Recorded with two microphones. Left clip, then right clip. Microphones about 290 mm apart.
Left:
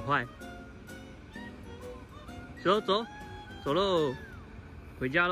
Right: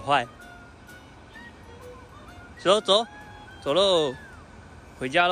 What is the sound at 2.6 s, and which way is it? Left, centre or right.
Speech, centre.